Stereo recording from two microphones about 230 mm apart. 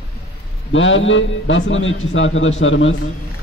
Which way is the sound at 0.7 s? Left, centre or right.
Left.